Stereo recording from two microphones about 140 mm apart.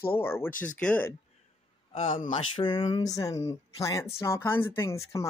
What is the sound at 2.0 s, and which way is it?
Speech, 70° left (ahead or behind).